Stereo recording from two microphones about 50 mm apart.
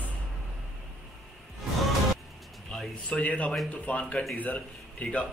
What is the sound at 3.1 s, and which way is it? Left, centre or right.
A man's voice, left.